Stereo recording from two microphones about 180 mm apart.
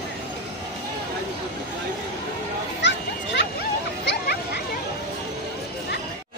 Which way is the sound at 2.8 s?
75° left (ahead or behind).